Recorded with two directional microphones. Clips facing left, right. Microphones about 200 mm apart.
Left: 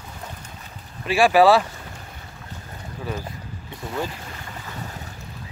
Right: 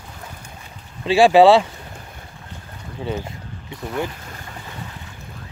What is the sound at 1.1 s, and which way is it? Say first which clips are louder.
Speech: right 4 dB; 25° right (ahead or behind).